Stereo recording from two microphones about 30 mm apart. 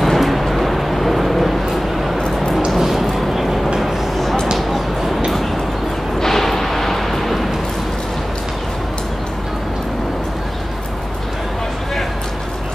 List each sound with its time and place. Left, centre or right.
0.0 s vehicle: centre
2.8 s a sound: centre
6.1 s artillery fire: centre